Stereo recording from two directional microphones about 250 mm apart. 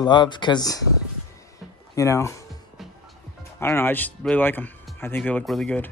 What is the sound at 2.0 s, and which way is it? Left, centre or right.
Speech, centre.